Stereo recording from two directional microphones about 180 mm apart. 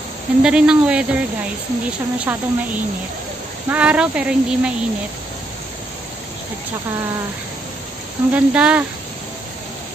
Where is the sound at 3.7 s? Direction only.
5° right (ahead or behind).